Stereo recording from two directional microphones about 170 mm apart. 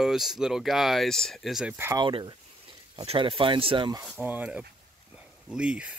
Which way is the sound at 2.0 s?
30° right (ahead or behind).